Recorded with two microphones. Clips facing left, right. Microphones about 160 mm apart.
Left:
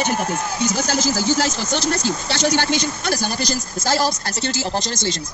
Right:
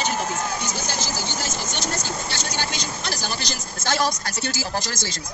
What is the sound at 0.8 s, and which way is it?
Speech, 90° left.